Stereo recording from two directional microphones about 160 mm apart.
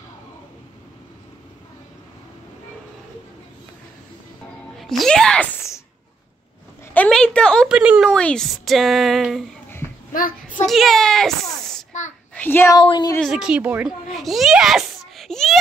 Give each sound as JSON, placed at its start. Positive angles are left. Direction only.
{"t": 4.7, "sound": "speech", "side_deg": 0}
{"t": 6.9, "sound": "a sound", "side_deg": 5}
{"t": 7.6, "sound": "speech", "side_deg": -5}
{"t": 8.1, "sound": "speech", "side_deg": 5}
{"t": 9.8, "sound": "a sound", "side_deg": -35}
{"t": 10.1, "sound": "a child's voice", "side_deg": 55}
{"t": 10.7, "sound": "a child's voice", "side_deg": 0}
{"t": 12.4, "sound": "speech", "side_deg": 15}
{"t": 12.7, "sound": "speech", "side_deg": 30}
{"t": 13.2, "sound": "a child's voice", "side_deg": -5}